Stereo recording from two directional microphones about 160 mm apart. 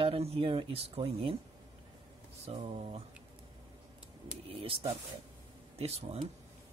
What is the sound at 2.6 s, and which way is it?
Speech, 40° right (ahead or behind).